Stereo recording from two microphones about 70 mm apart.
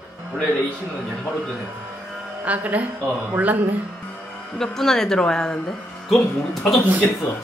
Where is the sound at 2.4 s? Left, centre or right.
Right.